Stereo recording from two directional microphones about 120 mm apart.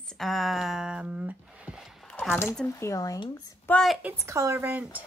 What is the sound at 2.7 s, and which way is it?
Speech, 25° left (ahead or behind).